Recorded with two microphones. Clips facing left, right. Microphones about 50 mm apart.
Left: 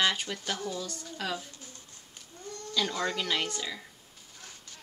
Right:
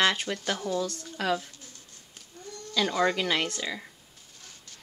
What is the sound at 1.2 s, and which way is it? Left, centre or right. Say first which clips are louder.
Speech: right 7 dB; centre.